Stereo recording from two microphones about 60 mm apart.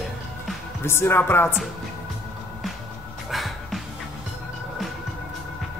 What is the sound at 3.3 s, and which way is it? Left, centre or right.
Music, centre.